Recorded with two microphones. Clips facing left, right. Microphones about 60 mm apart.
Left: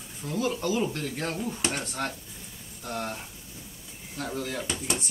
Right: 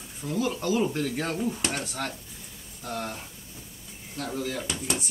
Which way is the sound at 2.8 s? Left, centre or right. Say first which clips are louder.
Even; centre.